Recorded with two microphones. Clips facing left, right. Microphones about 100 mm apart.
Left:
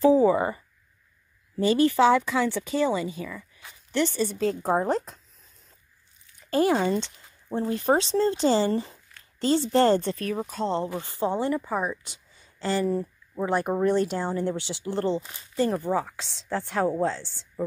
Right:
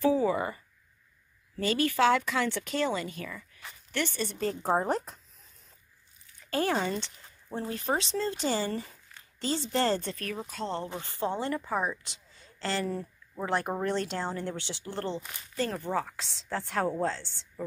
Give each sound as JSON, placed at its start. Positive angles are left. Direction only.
{"t": 0.0, "sound": "speech", "side_deg": 25}
{"t": 1.6, "sound": "speech", "side_deg": 20}
{"t": 4.2, "sound": "speech", "side_deg": 0}
{"t": 6.5, "sound": "speech", "side_deg": 10}
{"t": 11.0, "sound": "a woman's voice", "side_deg": 15}